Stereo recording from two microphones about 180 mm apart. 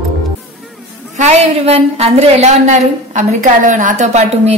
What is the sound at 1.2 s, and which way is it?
A woman's voice, 35° right (ahead or behind).